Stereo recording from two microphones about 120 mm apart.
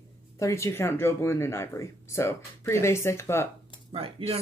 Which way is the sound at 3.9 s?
55° right (ahead or behind).